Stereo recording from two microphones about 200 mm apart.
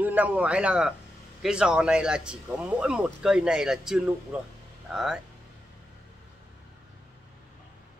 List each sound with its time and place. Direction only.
0.0 s speech: 5° right (ahead or behind)